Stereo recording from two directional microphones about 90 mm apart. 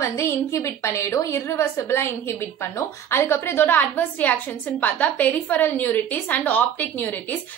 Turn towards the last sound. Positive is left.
turn(degrees=20)  # may be behind; listen again after turning